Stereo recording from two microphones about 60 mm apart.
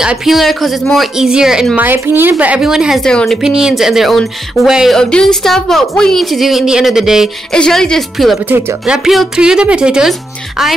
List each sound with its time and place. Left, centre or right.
0.0 s speech: centre
0.3 s a woman's voice: centre
1.8 s speech: right
2.3 s a woman's voice: right
2.6 s speech: centre
3.0 s a woman's voice: centre
3.4 s speech: centre
4.9 s a woman's voice: centre
7.5 s a woman's voice: centre
8.5 s speech: right
8.8 s speech: centre